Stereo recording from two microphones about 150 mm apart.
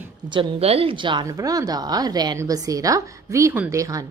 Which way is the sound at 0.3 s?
40° right (ahead or behind).